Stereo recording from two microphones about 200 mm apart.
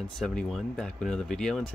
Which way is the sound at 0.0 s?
5° left (ahead or behind).